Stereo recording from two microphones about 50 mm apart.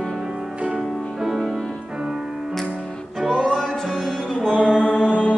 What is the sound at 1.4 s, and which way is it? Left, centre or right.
Music, centre.